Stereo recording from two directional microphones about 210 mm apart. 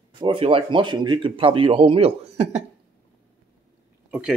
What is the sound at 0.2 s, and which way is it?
A man's voice, 25° right (ahead or behind).